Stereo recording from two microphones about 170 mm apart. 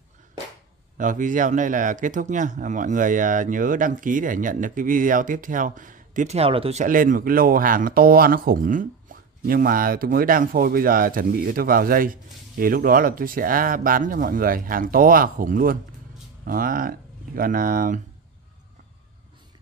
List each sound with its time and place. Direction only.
0.9 s speech: 50° right (ahead or behind)